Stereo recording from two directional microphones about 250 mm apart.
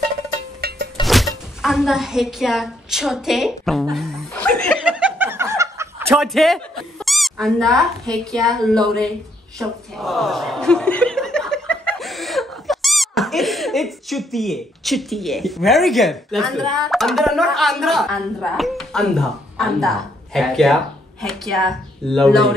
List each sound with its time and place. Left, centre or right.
0.6 s music: right
1.0 s a woman's voice: centre
3.9 s snicker: centre
7.1 s speech: centre